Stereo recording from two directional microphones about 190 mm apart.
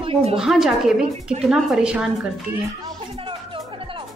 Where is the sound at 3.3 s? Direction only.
25° right (ahead or behind).